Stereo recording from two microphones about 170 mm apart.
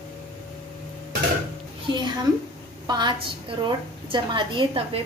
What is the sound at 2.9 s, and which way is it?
A woman's voice, 25° right (ahead or behind).